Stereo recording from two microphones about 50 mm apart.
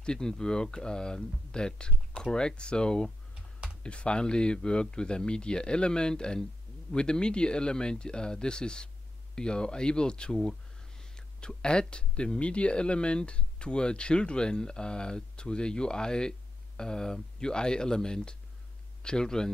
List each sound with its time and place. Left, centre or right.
0.0 s speech: centre